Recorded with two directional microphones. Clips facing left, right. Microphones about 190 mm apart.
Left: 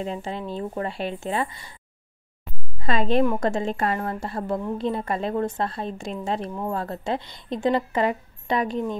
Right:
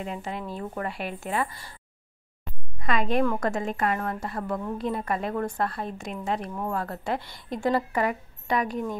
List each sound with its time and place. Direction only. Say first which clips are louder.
0.0 s a woman's voice: left 3 dB; 30° left (ahead or behind)
2.8 s a woman's voice: left 3 dB; 30° left (ahead or behind)